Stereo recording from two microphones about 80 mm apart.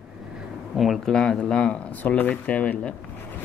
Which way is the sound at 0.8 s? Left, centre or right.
Centre.